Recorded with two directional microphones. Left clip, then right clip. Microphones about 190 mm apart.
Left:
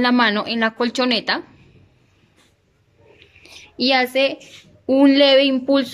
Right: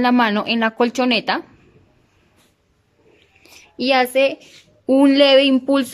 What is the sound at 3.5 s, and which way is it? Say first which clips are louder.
A woman's voice: even; 10° right (ahead or behind).